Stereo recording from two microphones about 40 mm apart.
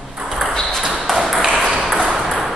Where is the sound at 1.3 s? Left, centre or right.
Centre.